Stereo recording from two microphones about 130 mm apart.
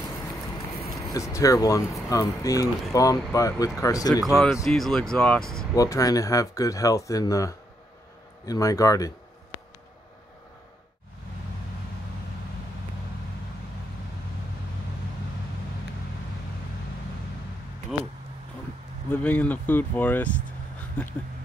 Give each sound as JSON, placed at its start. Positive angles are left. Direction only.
{"t": 0.8, "sound": "speech", "side_deg": 25}
{"t": 4.2, "sound": "speech", "side_deg": 0}
{"t": 5.8, "sound": "speech", "side_deg": 25}
{"t": 19.0, "sound": "speech", "side_deg": 10}